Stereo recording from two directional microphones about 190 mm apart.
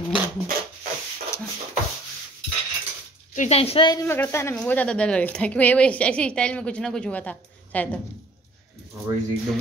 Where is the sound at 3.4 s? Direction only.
35° left (ahead or behind).